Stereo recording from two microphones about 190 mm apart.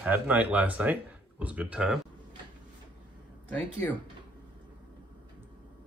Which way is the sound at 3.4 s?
10° left (ahead or behind).